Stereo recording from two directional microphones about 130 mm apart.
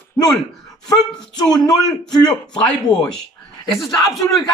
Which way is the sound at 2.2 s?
35° left (ahead or behind).